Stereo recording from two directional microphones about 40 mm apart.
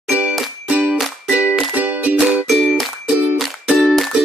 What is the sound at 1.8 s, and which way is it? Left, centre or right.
Music, right.